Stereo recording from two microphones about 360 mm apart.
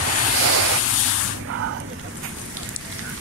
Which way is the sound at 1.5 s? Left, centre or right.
Right.